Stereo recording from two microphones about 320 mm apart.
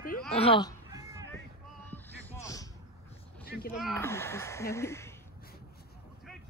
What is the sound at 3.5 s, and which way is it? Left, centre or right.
Speech, left.